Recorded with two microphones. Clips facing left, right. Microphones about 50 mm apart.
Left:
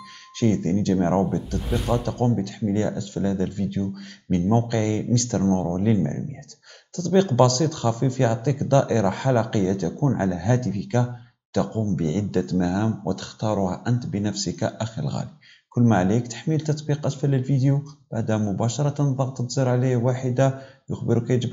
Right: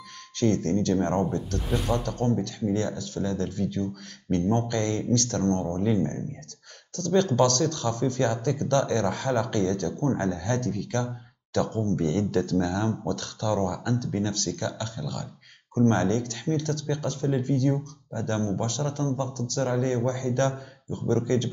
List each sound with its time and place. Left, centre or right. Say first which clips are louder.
0.4 s speech: left 2 dB; centre
1.7 s speech: left 3 dB; centre
11.1 s speech: left 1 dB; centre